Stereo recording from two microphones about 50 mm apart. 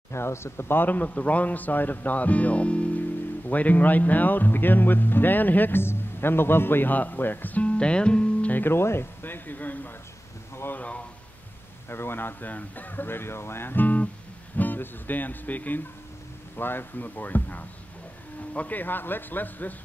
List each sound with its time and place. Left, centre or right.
0.1 s speech: left
7.6 s speech: left
8.5 s speech: left
10.7 s a sound: left
11.9 s speech: left
16.5 s speech: left